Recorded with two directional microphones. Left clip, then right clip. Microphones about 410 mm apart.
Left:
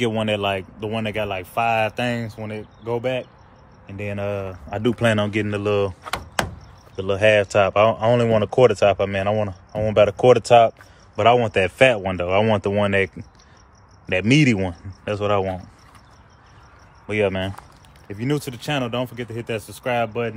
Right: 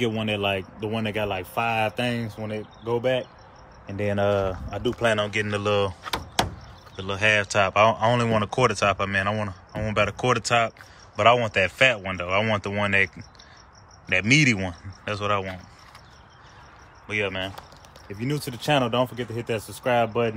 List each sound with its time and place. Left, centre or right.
0.0 s speech: centre
4.8 s speech: centre
5.5 s speech: centre
17.1 s speech: centre
18.0 s speech: centre